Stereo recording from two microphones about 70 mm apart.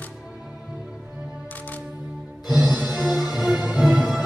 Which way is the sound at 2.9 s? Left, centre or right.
Centre.